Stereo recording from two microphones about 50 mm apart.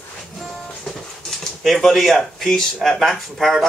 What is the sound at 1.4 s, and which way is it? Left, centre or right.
Speech, centre.